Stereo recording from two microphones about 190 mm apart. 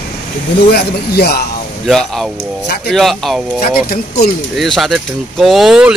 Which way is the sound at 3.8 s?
50° left (ahead or behind).